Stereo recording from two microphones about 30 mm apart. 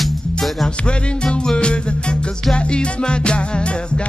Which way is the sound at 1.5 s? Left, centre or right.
Left.